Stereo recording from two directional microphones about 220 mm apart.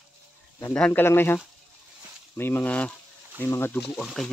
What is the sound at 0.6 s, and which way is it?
Speech, 5° left (ahead or behind).